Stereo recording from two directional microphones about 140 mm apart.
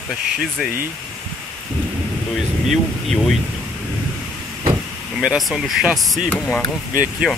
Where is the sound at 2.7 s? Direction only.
Centre (ahead or behind).